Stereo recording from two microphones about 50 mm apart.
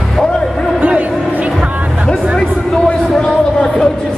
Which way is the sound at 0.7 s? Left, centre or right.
Right.